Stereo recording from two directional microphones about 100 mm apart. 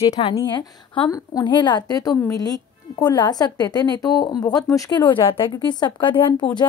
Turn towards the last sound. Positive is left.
turn(degrees=50)  # may be behind; listen again after turning